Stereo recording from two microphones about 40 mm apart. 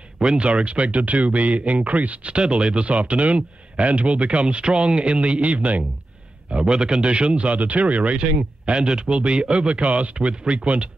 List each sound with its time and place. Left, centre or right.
0.2 s speech: centre
0.5 s speech: right
6.5 s speech: centre; by 8.2 s right
8.7 s speech: right